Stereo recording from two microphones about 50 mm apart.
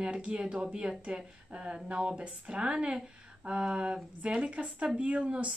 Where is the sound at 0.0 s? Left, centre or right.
Right.